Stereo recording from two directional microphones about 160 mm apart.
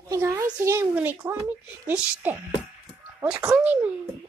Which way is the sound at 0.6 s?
15° right (ahead or behind).